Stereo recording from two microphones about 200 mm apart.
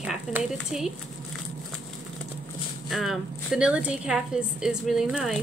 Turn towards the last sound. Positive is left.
turn(degrees=0)  # may be behind; listen again after turning